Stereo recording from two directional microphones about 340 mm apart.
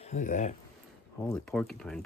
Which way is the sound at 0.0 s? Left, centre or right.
Left.